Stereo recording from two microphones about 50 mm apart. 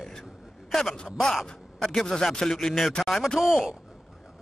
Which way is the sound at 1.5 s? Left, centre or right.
Centre.